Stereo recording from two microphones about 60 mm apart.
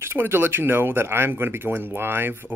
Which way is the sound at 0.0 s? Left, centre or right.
Right.